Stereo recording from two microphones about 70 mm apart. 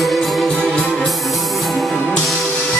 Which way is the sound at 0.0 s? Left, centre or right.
Centre.